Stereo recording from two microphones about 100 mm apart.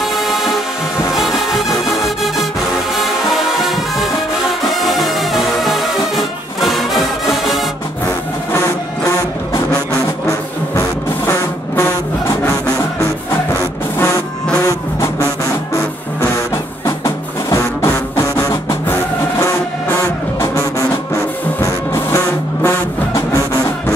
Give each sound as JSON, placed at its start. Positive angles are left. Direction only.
{"t": 0.0, "sound": "music", "side_deg": 0}
{"t": 10.2, "sound": "a sound", "side_deg": 25}
{"t": 13.5, "sound": "vehicle", "side_deg": 25}
{"t": 16.8, "sound": "music", "side_deg": 30}
{"t": 21.5, "sound": "vehicle", "side_deg": 25}